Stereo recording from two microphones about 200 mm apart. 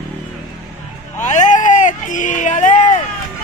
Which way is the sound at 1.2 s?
40° left (ahead or behind).